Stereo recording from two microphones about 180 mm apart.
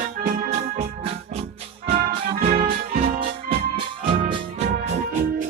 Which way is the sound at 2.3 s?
30° right (ahead or behind).